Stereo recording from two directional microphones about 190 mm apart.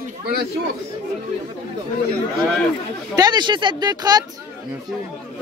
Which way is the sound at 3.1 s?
20° right (ahead or behind).